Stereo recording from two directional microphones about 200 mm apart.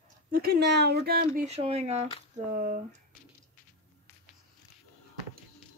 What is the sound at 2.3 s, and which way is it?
Speech, 45° right (ahead or behind).